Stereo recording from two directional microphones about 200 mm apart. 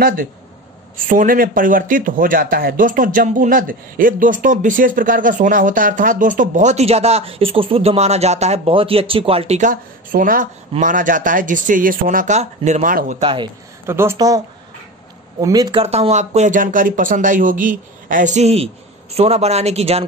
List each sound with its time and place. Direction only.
0.0 s speech: 45° right (ahead or behind)
13.2 s speech: 25° right (ahead or behind)
13.8 s speech: 15° right (ahead or behind)
15.4 s speech: 20° right (ahead or behind)
15.8 s speech: 30° right (ahead or behind)